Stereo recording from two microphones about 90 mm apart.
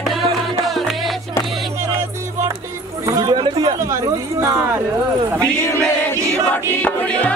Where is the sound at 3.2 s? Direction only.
60° right (ahead or behind).